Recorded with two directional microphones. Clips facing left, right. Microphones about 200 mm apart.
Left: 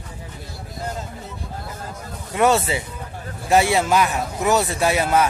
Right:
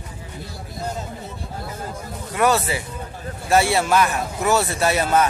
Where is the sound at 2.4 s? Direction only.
25° left (ahead or behind).